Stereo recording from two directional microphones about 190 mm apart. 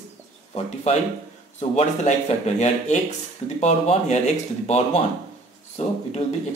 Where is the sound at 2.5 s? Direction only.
40° left (ahead or behind).